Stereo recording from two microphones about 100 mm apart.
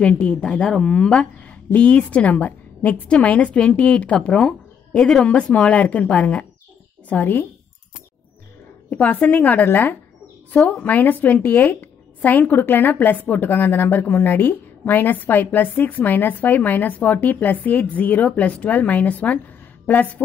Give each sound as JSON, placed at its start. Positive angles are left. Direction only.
{"t": 0.0, "sound": "a woman's voice", "side_deg": 10}
{"t": 8.9, "sound": "a woman's voice", "side_deg": 15}